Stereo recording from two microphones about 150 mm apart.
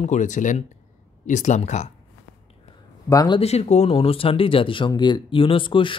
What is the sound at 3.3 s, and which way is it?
Speech, 45° left (ahead or behind).